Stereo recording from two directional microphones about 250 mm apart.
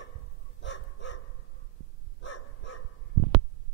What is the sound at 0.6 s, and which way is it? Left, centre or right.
Dog, left.